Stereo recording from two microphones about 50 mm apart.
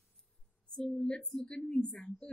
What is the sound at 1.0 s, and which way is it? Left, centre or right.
A woman's voice, left.